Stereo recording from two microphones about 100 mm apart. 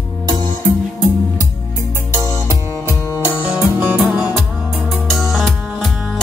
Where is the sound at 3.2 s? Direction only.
20° right (ahead or behind).